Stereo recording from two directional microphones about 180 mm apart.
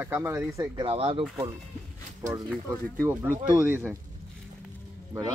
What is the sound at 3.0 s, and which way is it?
Speech, 10° right (ahead or behind).